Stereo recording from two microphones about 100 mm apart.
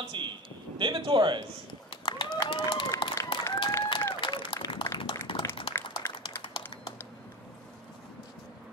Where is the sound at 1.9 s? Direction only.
50° left (ahead or behind).